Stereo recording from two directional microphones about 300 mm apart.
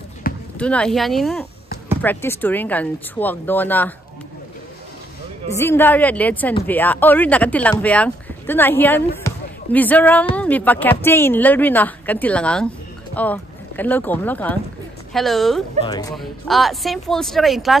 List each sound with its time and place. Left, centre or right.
0.2 s basketball bounce: left
0.6 s speech: centre
5.5 s speech: centre
15.8 s speech: centre
16.2 s speech: centre